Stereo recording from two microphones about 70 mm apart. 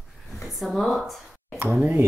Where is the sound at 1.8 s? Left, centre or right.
Right.